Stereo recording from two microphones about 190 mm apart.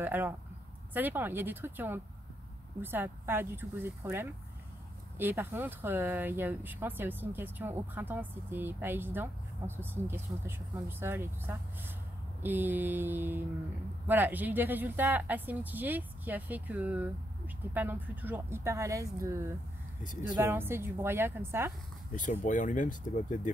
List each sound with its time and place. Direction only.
0.0 s speech: 10° right (ahead or behind)
22.1 s speech: 40° left (ahead or behind)